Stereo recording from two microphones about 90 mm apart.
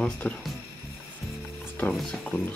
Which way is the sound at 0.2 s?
15° left (ahead or behind).